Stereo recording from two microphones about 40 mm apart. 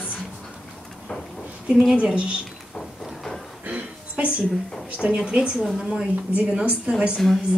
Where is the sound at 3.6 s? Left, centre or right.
Right.